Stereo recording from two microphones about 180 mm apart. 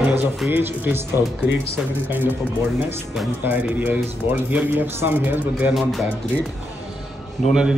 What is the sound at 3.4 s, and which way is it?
Speech, 10° right (ahead or behind).